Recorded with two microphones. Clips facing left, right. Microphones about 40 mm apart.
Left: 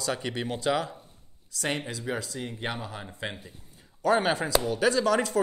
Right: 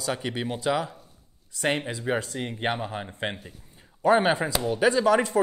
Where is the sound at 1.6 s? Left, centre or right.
Right.